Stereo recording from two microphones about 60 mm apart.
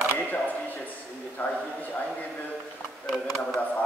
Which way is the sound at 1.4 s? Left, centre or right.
Left.